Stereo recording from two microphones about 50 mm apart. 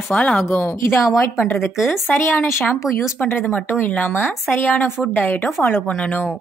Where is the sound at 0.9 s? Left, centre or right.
Left.